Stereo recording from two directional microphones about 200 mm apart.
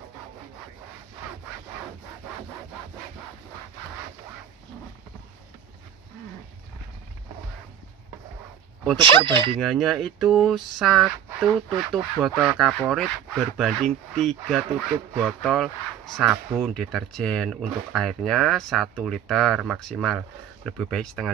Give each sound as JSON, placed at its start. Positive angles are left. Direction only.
{"t": 8.9, "sound": "speech", "side_deg": -25}
{"t": 9.6, "sound": "speech", "side_deg": 0}